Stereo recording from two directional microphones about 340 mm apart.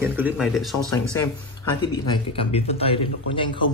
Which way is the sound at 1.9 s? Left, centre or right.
Centre.